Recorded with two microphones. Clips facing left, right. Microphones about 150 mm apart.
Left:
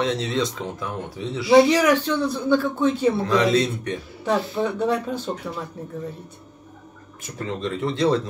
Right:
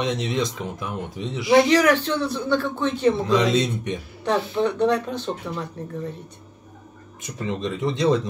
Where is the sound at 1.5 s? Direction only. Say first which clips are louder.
Left 1 dB; 10° left (ahead or behind).